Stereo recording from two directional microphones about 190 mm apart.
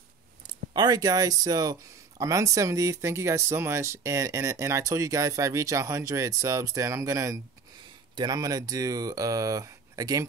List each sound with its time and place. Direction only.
0.7 s speech: 20° right (ahead or behind)